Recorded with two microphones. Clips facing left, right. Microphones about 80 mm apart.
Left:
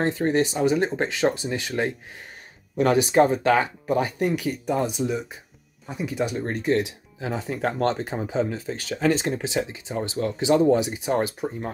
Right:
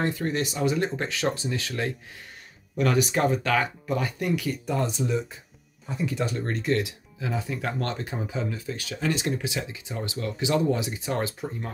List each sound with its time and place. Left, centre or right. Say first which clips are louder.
0.0 s speech: left 5 dB; left
4.4 s speech: left 3 dB; left